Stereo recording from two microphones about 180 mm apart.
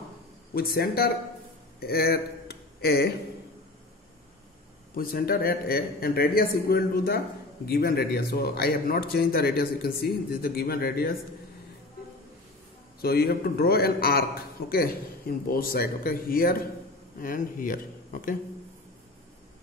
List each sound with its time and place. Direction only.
0.6 s a man's voice: 55° left (ahead or behind)
4.9 s a man's voice: 55° left (ahead or behind)
13.0 s a man's voice: 60° left (ahead or behind)